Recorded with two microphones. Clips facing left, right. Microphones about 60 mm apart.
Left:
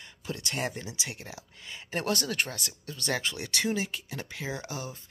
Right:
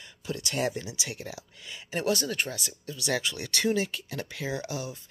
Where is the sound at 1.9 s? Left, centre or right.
Left.